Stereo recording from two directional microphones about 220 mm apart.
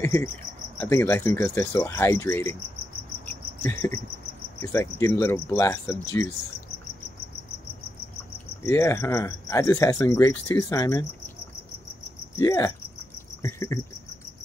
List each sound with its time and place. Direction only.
0.0 s speech: 15° left (ahead or behind)
3.3 s cricket: 10° left (ahead or behind)
4.6 s speech: 10° left (ahead or behind)
8.6 s speech: 10° left (ahead or behind)
12.4 s speech: 15° left (ahead or behind)
13.4 s cricket: 15° left (ahead or behind)